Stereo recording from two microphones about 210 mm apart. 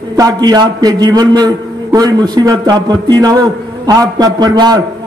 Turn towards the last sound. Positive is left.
turn(degrees=-20)  # may be behind; listen again after turning